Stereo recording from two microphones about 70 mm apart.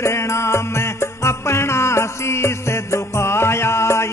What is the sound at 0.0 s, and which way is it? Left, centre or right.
Music, left.